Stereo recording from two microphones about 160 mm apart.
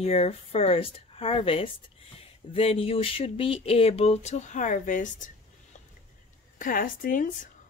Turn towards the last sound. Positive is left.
turn(degrees=55)  # may be behind; listen again after turning